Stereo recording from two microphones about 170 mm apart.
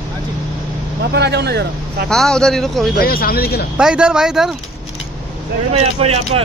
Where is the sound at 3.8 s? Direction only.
5° right (ahead or behind).